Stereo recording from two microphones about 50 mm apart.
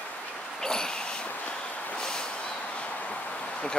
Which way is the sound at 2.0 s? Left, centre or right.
Centre.